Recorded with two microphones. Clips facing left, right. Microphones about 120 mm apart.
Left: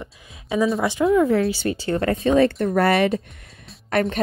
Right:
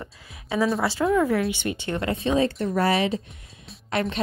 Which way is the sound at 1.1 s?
25° left (ahead or behind).